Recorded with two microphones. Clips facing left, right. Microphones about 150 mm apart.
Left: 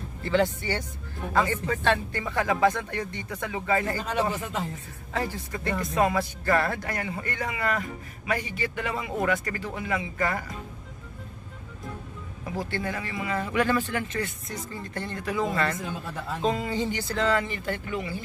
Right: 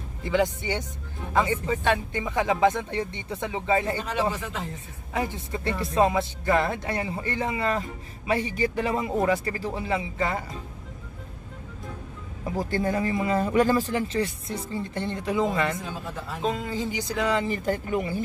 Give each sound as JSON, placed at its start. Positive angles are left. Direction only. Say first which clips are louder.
{"t": 0.2, "sound": "speech", "louder": "even", "side_deg": -15}
{"t": 5.1, "sound": "speech", "louder": "right 2 dB", "side_deg": -20}
{"t": 12.5, "sound": "speech", "louder": "right 5 dB", "side_deg": -40}
{"t": 16.4, "sound": "speech", "louder": "left 1 dB", "side_deg": 0}
{"t": 16.9, "sound": "speech", "louder": "right 1 dB", "side_deg": -10}
{"t": 17.5, "sound": "speech", "louder": "right 5 dB", "side_deg": -35}
{"t": 17.9, "sound": "speech", "louder": "right 5 dB", "side_deg": -45}